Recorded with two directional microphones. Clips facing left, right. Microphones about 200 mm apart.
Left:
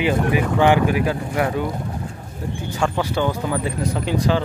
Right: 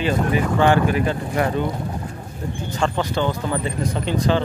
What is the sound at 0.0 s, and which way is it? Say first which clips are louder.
Speech: left 1 dB; 15° left (ahead or behind).